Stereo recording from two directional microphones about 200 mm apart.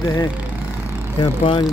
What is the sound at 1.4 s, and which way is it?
Speech, 25° left (ahead or behind).